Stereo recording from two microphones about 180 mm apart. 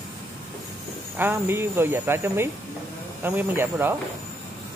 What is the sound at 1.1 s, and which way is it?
Speech, 10° right (ahead or behind).